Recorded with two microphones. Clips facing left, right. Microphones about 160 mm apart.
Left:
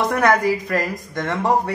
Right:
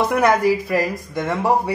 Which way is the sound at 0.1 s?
10° right (ahead or behind).